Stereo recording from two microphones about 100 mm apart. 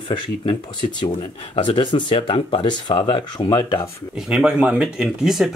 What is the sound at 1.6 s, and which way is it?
Speech, 55° left (ahead or behind).